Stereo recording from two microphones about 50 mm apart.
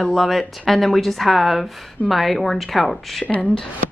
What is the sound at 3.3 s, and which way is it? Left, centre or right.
Speech, left.